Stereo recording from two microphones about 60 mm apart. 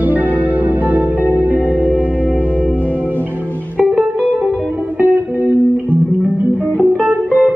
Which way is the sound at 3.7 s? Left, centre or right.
Centre.